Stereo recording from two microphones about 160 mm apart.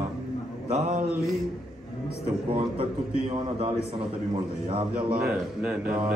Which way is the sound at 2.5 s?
40° right (ahead or behind).